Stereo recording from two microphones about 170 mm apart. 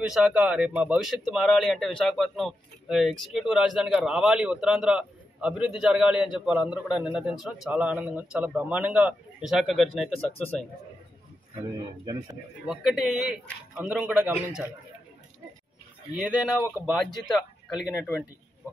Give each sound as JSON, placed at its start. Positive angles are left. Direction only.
{"t": 0.0, "sound": "speech", "side_deg": -5}
{"t": 12.0, "sound": "a man's voice", "side_deg": -25}
{"t": 12.6, "sound": "speech", "side_deg": 0}
{"t": 16.2, "sound": "speech", "side_deg": 0}